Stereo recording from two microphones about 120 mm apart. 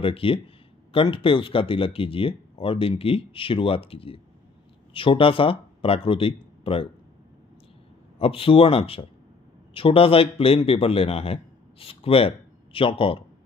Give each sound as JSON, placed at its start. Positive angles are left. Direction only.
{"t": 0.0, "sound": "speech", "side_deg": 50}
{"t": 8.2, "sound": "a man's voice", "side_deg": 50}